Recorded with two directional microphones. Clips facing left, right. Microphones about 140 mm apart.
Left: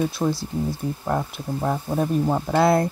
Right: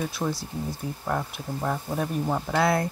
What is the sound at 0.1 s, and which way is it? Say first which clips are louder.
Speech: left 5 dB; 25° left (ahead or behind).